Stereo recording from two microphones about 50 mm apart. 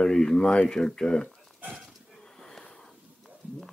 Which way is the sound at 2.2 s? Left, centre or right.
Centre.